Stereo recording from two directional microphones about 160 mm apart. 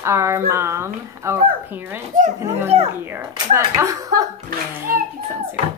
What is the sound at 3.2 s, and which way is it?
Speech, 20° right (ahead or behind).